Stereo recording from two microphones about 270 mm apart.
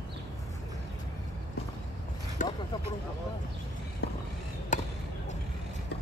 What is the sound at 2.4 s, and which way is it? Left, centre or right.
Vehicle, left.